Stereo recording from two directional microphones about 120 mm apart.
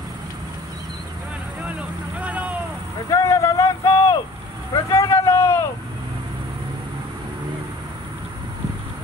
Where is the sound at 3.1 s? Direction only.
25° left (ahead or behind).